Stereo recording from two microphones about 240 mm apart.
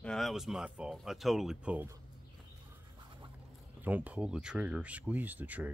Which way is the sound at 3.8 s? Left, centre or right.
Centre.